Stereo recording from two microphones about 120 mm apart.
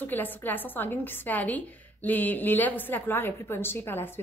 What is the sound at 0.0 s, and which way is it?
A woman's voice, 15° left (ahead or behind).